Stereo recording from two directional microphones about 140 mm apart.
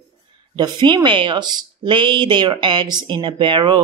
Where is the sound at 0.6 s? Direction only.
30° right (ahead or behind).